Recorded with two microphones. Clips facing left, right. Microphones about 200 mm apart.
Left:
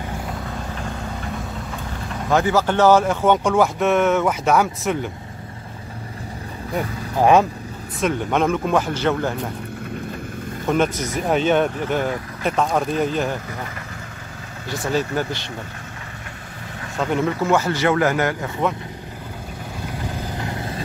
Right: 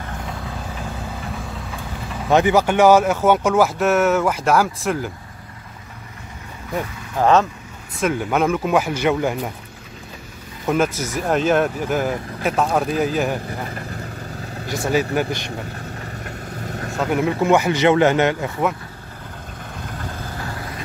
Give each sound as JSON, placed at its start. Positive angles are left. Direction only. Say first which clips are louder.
{"t": 0.3, "sound": "vehicle", "louder": "left 1 dB", "side_deg": 0}
{"t": 2.2, "sound": "speech", "louder": "right 3 dB", "side_deg": -20}
{"t": 7.2, "sound": "speech", "louder": "left 1 dB", "side_deg": 15}
{"t": 8.0, "sound": "speech", "louder": "right 1 dB", "side_deg": -5}
{"t": 10.7, "sound": "speech", "louder": "even", "side_deg": -5}
{"t": 14.7, "sound": "speech", "louder": "right 2 dB", "side_deg": -10}
{"t": 16.6, "sound": "vehicle", "louder": "right 5 dB", "side_deg": -45}
{"t": 17.0, "sound": "speech", "louder": "right 1 dB", "side_deg": -10}
{"t": 20.0, "sound": "vehicle", "louder": "left 3 dB", "side_deg": 15}